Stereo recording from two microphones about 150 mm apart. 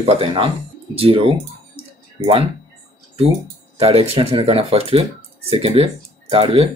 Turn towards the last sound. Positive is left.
turn(degrees=-40)  # may be behind; listen again after turning